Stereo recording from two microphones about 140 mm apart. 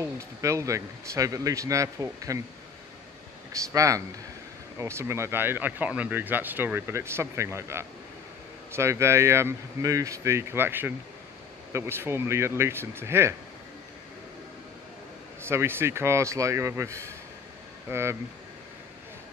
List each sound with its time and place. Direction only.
0.0 s speech: 20° right (ahead or behind)
3.7 s speech: 25° right (ahead or behind)
15.4 s speech: 15° right (ahead or behind)